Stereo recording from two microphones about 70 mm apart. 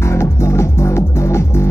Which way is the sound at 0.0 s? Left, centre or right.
Left.